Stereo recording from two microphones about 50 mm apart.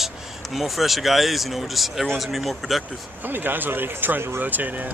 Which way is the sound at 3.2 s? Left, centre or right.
Right.